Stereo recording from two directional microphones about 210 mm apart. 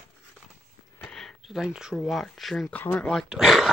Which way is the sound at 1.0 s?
5° left (ahead or behind).